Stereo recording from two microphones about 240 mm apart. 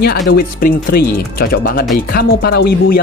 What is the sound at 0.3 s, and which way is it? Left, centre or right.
Speech, left.